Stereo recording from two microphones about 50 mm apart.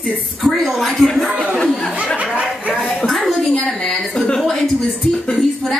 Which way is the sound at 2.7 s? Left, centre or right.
Centre.